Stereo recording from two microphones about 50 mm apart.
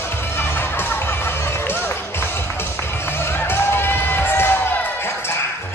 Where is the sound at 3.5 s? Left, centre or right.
Left.